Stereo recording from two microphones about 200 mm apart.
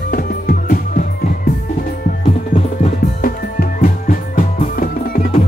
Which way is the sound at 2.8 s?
45° left (ahead or behind).